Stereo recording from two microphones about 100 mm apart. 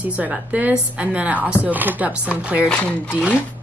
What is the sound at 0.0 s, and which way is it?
Speech, 15° right (ahead or behind).